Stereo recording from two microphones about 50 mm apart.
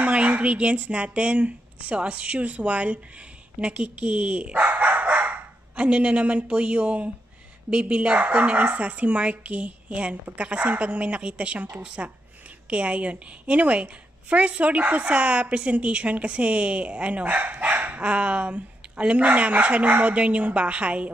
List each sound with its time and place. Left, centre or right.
0.0 s a woman's voice: right
4.6 s dog: right
7.7 s a woman's voice: right